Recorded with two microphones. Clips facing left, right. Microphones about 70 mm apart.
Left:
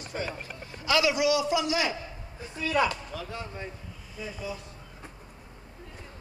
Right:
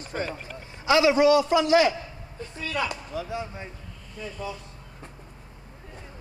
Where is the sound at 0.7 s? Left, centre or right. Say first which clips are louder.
Right 5 dB; right.